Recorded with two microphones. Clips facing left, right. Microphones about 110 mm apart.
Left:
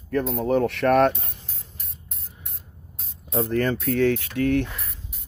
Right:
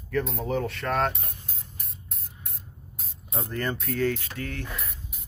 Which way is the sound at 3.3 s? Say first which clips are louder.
Left 8 dB; 70° left (ahead or behind).